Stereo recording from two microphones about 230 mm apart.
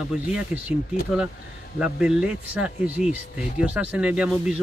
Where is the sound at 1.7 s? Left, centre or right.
Centre.